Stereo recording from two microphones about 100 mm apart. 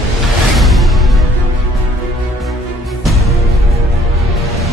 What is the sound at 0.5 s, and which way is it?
Music, centre (ahead or behind).